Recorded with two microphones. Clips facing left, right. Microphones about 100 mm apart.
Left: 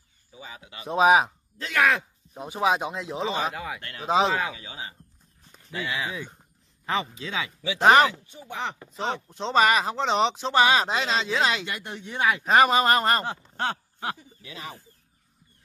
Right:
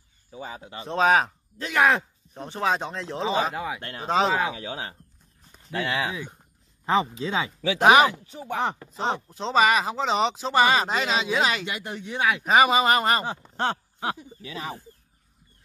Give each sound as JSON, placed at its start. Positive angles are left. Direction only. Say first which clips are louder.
{"t": 0.3, "sound": "speech", "louder": "right 6 dB", "side_deg": -45}
{"t": 0.8, "sound": "speech", "louder": "left 2 dB", "side_deg": 10}
{"t": 1.6, "sound": "speech", "louder": "right 2 dB", "side_deg": -20}
{"t": 2.3, "sound": "speech", "louder": "left 1 dB", "side_deg": 10}
{"t": 3.5, "sound": "speech", "louder": "right 3 dB", "side_deg": -20}
{"t": 4.0, "sound": "speech", "louder": "even", "side_deg": 0}
{"t": 4.6, "sound": "speech", "louder": "right 6 dB", "side_deg": -55}
{"t": 6.9, "sound": "speech", "louder": "right 5 dB", "side_deg": -30}
{"t": 7.8, "sound": "speech", "louder": "right 1 dB", "side_deg": -10}
{"t": 8.7, "sound": "speech", "louder": "right 2 dB", "side_deg": 0}
{"t": 13.3, "sound": "a sound", "louder": "right 2 dB", "side_deg": -20}